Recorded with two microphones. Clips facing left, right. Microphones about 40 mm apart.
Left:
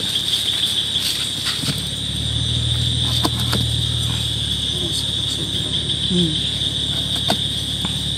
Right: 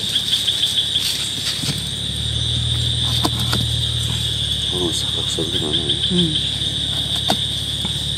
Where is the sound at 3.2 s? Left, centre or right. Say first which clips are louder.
Even; centre.